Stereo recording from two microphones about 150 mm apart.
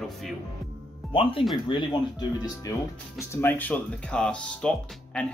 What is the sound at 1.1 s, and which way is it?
Speech, 35° left (ahead or behind).